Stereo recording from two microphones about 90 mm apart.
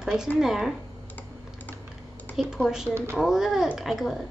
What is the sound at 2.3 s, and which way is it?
A woman's voice, 5° right (ahead or behind).